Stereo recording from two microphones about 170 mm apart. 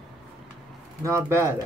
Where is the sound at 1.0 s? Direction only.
15° right (ahead or behind).